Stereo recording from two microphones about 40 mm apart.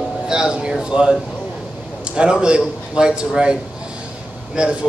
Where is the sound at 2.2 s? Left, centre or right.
Right.